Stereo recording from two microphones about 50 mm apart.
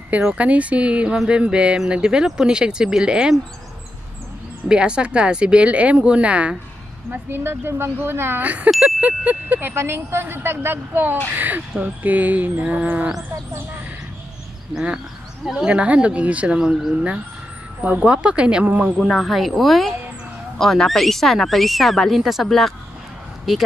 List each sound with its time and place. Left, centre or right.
0.3 s speech: right
1.1 s speech: centre
4.6 s speech: centre
7.1 s a woman's voice: right
8.4 s speech: right
9.8 s a woman's voice: right
15.5 s speech: centre
16.5 s speech: centre
17.8 s speech: right
18.9 s speech: centre